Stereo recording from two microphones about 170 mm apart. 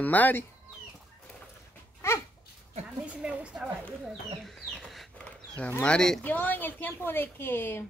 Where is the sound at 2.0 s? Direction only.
15° left (ahead or behind).